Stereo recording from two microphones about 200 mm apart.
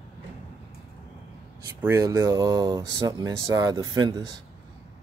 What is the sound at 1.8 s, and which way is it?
Speech, 15° right (ahead or behind).